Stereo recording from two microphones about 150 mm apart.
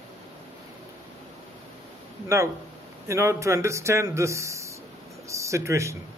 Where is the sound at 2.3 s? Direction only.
15° right (ahead or behind).